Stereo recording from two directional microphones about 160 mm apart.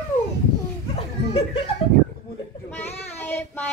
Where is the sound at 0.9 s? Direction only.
35° left (ahead or behind).